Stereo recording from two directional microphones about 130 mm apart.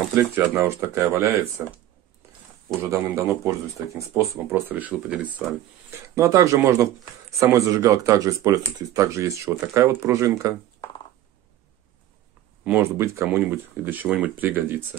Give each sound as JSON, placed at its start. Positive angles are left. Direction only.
{"t": 0.1, "sound": "speech", "side_deg": -20}
{"t": 2.9, "sound": "speech", "side_deg": -25}
{"t": 6.0, "sound": "speech", "side_deg": -25}
{"t": 12.6, "sound": "speech", "side_deg": -20}